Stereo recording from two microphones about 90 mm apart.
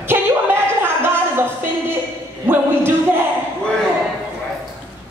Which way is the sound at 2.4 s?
25° right (ahead or behind).